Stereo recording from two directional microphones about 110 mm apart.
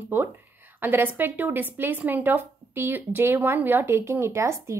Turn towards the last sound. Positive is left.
turn(degrees=-25)  # may be behind; listen again after turning